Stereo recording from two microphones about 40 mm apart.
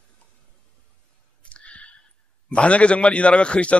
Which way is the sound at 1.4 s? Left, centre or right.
Left.